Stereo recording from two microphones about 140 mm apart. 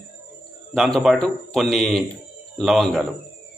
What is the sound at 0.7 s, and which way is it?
A man's voice, centre (ahead or behind).